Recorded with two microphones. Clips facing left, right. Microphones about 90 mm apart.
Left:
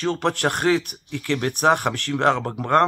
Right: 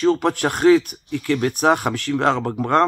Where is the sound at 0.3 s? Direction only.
60° left (ahead or behind).